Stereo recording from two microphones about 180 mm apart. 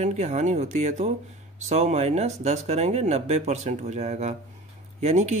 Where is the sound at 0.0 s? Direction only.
40° right (ahead or behind).